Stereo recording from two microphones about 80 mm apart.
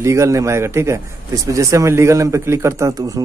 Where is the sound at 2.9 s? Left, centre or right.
Right.